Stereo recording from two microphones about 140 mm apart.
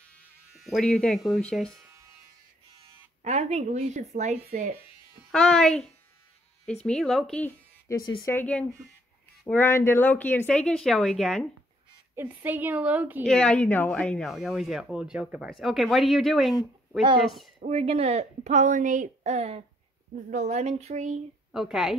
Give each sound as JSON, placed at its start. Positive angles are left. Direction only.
{"t": 0.6, "sound": "speech", "side_deg": 0}
{"t": 3.3, "sound": "a woman's voice", "side_deg": -50}
{"t": 5.3, "sound": "speech", "side_deg": 5}
{"t": 6.9, "sound": "speech", "side_deg": 0}
{"t": 8.0, "sound": "speech", "side_deg": 30}
{"t": 8.3, "sound": "speech", "side_deg": 10}
{"t": 12.2, "sound": "a woman's voice", "side_deg": -15}
{"t": 13.2, "sound": "speech", "side_deg": 5}
{"t": 17.6, "sound": "a woman's voice", "side_deg": -45}
{"t": 21.5, "sound": "a woman's voice", "side_deg": 0}